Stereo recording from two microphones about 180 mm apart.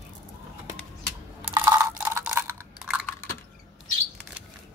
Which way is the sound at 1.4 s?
10° right (ahead or behind).